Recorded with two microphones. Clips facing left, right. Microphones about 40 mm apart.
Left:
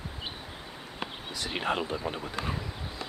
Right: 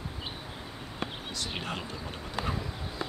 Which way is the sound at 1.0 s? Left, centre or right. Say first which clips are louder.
Even; left.